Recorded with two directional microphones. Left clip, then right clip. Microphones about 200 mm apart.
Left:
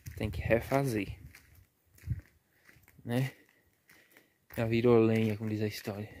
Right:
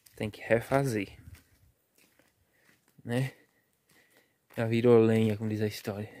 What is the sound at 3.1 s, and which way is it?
Speech, centre (ahead or behind).